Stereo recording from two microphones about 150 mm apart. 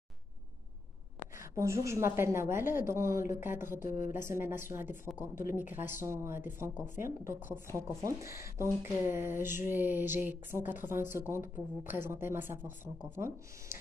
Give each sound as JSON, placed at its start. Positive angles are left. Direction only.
{"t": 1.4, "sound": "speech", "side_deg": -20}